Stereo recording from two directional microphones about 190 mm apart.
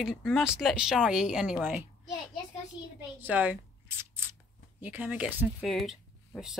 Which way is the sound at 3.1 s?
10° right (ahead or behind).